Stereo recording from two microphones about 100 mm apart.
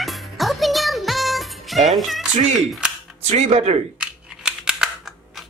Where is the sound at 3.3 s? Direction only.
90° right.